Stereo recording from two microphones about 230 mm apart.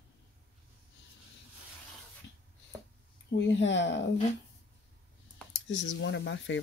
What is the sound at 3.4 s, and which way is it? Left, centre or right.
Speech, left.